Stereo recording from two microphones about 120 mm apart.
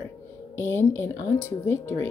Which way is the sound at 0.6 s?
20° left (ahead or behind).